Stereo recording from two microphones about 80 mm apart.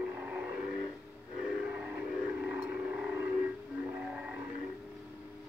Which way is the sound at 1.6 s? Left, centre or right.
Centre.